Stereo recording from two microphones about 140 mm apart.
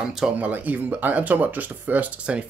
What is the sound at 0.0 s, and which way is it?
Speech, 5° right (ahead or behind).